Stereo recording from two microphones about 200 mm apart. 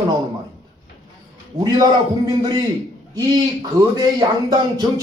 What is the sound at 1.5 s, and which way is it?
Speech, 20° right (ahead or behind).